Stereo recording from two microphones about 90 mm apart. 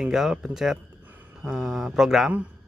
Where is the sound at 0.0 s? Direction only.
5° right (ahead or behind).